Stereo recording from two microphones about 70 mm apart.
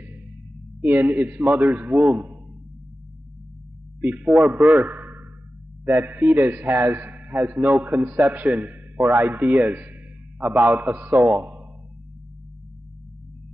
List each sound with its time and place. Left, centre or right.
0.7 s a man's voice: right
4.0 s a man's voice: right